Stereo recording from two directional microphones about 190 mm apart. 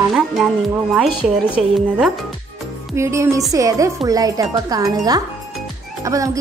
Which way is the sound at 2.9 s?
15° right (ahead or behind).